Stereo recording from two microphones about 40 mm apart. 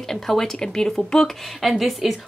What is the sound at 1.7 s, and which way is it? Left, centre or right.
Speech, centre.